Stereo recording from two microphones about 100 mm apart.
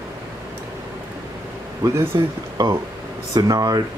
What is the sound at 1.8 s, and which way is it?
Speech, 35° right (ahead or behind).